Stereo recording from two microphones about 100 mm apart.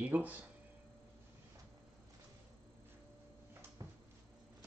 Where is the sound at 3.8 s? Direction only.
35° right (ahead or behind).